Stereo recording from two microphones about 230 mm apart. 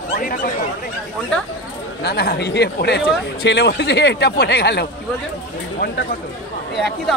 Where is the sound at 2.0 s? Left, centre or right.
Left.